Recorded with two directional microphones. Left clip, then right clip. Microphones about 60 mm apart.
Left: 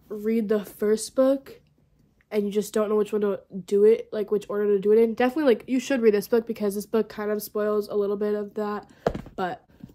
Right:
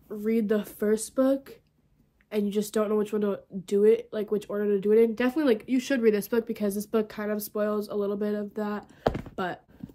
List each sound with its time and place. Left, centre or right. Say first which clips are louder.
0.1 s speech: left 2 dB; centre